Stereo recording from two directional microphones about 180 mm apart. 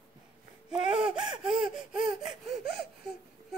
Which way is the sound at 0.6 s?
5° right (ahead or behind).